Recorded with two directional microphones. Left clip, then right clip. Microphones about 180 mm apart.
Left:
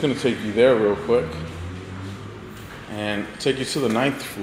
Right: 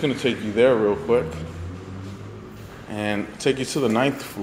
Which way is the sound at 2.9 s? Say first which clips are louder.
Right 1 dB; 15° right (ahead or behind).